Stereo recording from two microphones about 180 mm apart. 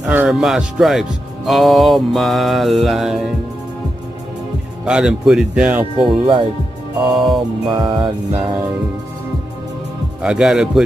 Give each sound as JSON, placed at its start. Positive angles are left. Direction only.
{"t": 0.0, "sound": "music", "side_deg": -5}
{"t": 4.8, "sound": "music", "side_deg": -5}
{"t": 5.9, "sound": "music", "side_deg": -30}
{"t": 7.1, "sound": "music", "side_deg": 0}
{"t": 7.8, "sound": "music", "side_deg": -25}
{"t": 10.2, "sound": "music", "side_deg": -5}